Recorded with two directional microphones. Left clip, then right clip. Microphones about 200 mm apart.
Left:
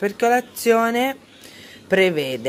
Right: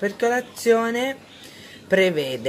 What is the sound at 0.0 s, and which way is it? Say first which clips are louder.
Speech: left 3 dB; 40° left (ahead or behind).